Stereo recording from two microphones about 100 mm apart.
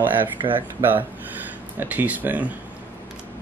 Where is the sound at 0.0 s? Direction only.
20° right (ahead or behind).